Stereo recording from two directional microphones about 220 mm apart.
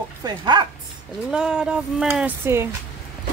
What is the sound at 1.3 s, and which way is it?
Speech, 5° right (ahead or behind).